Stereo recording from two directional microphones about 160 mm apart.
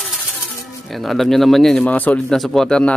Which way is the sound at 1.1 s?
Centre (ahead or behind).